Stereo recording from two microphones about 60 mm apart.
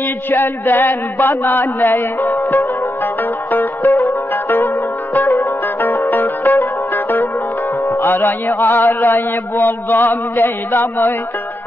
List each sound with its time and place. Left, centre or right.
0.3 s music: left
3.5 s music: left